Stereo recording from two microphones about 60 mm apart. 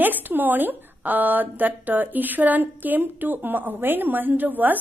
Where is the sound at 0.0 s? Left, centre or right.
Right.